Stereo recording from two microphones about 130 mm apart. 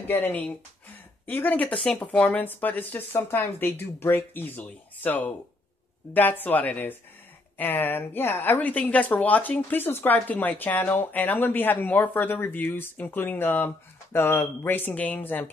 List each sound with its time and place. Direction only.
0.1 s a woman's voice: 15° left (ahead or behind)